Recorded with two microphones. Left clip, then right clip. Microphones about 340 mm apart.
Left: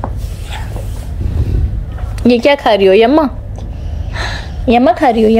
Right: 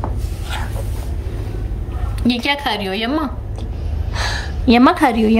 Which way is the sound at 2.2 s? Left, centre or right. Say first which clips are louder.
Left 9 dB; centre.